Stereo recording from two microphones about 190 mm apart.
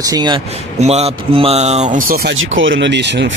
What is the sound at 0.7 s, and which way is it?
A man's voice, 35° right (ahead or behind).